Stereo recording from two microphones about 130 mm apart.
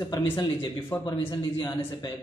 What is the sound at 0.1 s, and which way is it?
Speech, 35° left (ahead or behind).